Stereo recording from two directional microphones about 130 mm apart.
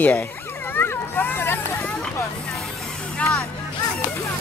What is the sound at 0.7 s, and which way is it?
Vehicle, 15° left (ahead or behind).